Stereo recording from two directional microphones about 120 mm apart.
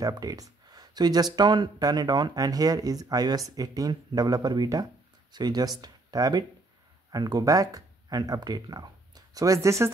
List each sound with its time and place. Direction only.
0.0 s speech: 30° right (ahead or behind)